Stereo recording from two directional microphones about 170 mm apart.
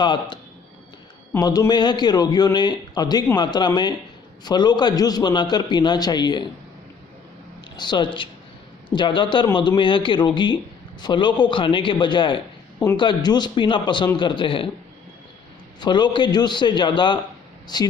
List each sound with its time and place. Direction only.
0.0 s a man's voice: 25° left (ahead or behind)
7.7 s a man's voice: 25° left (ahead or behind)
15.8 s a man's voice: 25° left (ahead or behind)